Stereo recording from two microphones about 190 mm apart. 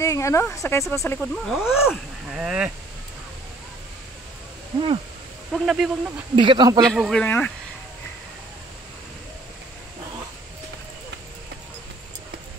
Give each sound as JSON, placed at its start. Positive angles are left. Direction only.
{"t": 0.0, "sound": "speech", "side_deg": 15}
{"t": 5.5, "sound": "speech", "side_deg": 0}
{"t": 6.3, "sound": "speech", "side_deg": -25}
{"t": 6.8, "sound": "speech", "side_deg": 5}